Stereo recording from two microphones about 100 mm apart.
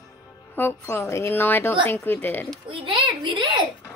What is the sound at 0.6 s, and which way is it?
A woman's voice, 25° left (ahead or behind).